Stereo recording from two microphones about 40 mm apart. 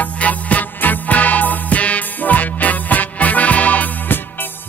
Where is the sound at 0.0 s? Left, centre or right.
Left.